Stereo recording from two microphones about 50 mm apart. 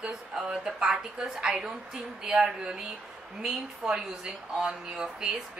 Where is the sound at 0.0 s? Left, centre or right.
Centre.